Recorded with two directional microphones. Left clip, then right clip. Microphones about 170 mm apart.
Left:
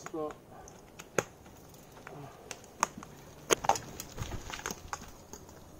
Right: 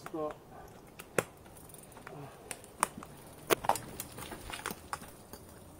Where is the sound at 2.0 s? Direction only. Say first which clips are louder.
Left 1 dB; 5° right (ahead or behind).